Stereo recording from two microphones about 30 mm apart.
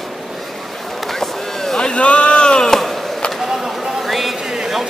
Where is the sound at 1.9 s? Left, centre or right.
Left.